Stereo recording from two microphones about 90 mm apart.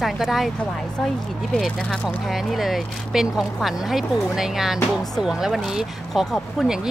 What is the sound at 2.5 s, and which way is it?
Speech, centre (ahead or behind).